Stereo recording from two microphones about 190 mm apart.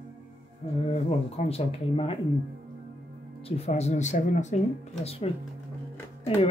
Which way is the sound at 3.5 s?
35° left (ahead or behind).